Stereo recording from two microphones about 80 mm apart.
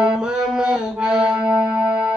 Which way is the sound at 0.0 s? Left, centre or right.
Centre.